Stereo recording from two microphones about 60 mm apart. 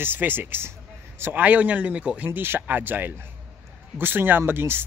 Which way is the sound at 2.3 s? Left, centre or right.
Right.